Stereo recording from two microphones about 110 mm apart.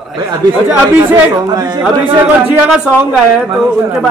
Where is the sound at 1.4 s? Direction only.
40° right (ahead or behind).